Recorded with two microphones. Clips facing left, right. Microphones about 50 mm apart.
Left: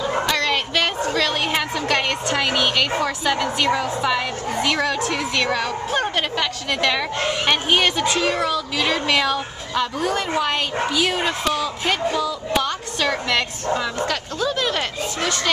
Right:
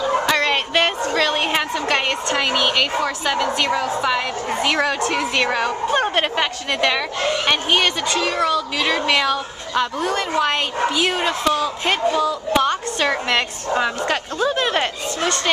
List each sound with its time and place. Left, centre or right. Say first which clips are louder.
0.3 s bow-wow: right 3 dB; right
1.1 s a woman's voice: right 2 dB; centre
4.6 s a woman's voice: right 2 dB; centre
7.4 s speech: left 1 dB; centre
11.5 s a woman's voice: right 2 dB; centre